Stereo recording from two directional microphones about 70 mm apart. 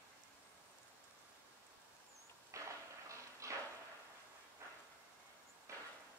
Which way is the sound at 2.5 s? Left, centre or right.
Right.